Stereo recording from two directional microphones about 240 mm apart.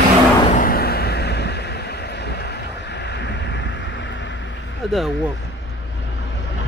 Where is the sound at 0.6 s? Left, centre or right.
Left.